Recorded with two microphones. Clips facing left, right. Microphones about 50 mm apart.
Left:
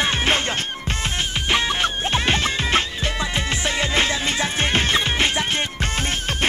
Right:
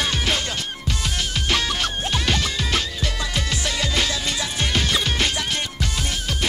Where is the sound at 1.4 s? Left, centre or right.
Left.